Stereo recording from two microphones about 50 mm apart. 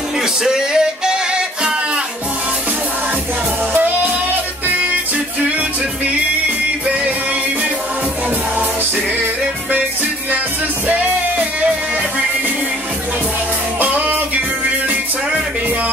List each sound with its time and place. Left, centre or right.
0.4 s male singing: centre
13.7 s music: right